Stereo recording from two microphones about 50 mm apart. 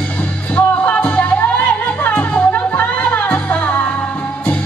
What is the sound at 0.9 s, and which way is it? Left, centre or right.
Music, left.